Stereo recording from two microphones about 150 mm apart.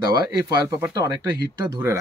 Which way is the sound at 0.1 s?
25° right (ahead or behind).